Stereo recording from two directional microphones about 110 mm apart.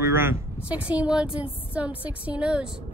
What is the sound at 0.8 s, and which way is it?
A woman's voice, 10° right (ahead or behind).